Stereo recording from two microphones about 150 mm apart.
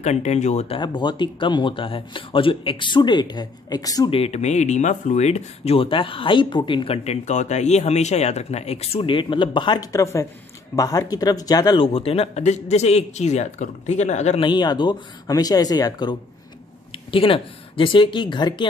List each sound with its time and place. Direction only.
0.0 s speech: 50° left (ahead or behind)
0.7 s speech: 30° left (ahead or behind)
4.1 s speech: 45° left (ahead or behind)
14.4 s speech: 30° left (ahead or behind)